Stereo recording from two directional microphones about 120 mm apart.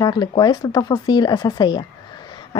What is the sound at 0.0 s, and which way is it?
Speech, 35° left (ahead or behind).